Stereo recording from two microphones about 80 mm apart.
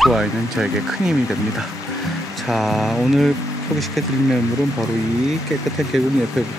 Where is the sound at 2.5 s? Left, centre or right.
Centre.